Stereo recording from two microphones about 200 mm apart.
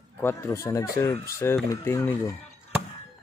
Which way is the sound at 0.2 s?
15° left (ahead or behind).